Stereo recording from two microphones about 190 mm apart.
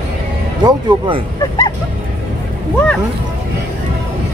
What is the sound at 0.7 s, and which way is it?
Speech, 25° right (ahead or behind).